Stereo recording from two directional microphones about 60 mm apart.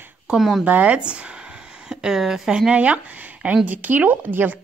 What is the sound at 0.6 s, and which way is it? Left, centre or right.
Speech, right.